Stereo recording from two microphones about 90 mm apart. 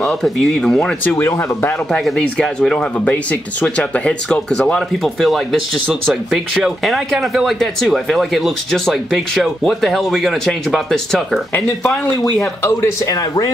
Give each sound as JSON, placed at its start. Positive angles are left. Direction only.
{"t": 0.0, "sound": "speech", "side_deg": 5}
{"t": 1.1, "sound": "speech", "side_deg": 30}
{"t": 1.9, "sound": "speech", "side_deg": 10}
{"t": 12.4, "sound": "speech", "side_deg": 35}